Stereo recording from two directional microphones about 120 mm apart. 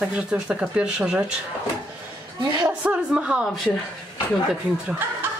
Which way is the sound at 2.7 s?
10° right (ahead or behind).